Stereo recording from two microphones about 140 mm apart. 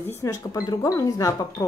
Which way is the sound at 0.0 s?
20° left (ahead or behind).